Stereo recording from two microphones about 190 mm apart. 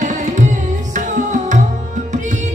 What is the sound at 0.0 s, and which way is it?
Tabla, 40° right (ahead or behind).